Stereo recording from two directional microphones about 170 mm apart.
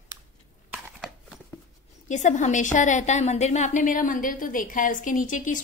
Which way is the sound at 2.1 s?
45° left (ahead or behind).